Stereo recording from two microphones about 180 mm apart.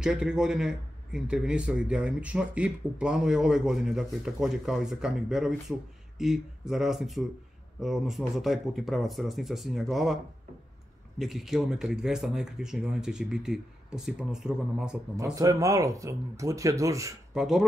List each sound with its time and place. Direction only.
0.0 s a man's voice: 5° right (ahead or behind)
11.1 s a man's voice: centre (ahead or behind)
15.3 s speech: 20° right (ahead or behind)
17.3 s speech: 5° right (ahead or behind)